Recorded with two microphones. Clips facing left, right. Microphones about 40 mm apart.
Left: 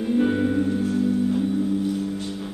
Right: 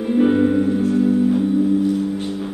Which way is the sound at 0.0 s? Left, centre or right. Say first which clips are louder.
Right 5 dB; centre.